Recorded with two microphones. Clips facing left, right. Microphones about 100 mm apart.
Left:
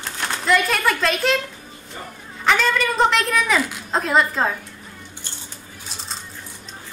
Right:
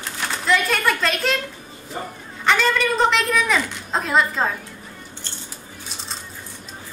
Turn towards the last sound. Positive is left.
turn(degrees=0)  # may be behind; listen again after turning